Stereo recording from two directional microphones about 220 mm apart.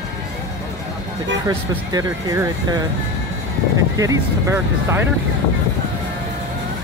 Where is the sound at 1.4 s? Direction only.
15° right (ahead or behind).